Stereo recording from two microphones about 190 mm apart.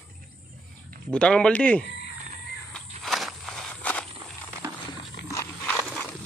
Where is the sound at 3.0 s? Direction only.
Centre (ahead or behind).